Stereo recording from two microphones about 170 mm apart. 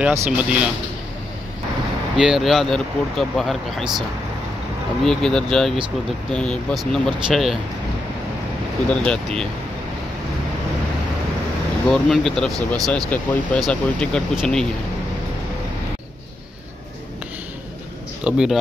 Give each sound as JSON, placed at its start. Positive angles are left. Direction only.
{"t": 0.0, "sound": "speech", "side_deg": -5}
{"t": 2.1, "sound": "speech", "side_deg": 0}
{"t": 5.0, "sound": "speech", "side_deg": 5}
{"t": 8.8, "sound": "speech", "side_deg": 5}
{"t": 11.9, "sound": "speech", "side_deg": 0}
{"t": 18.2, "sound": "speech", "side_deg": -5}